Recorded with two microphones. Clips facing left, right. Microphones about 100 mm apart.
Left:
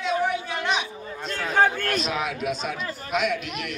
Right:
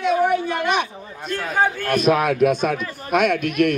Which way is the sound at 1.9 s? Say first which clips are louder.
Right 9 dB; 55° right (ahead or behind).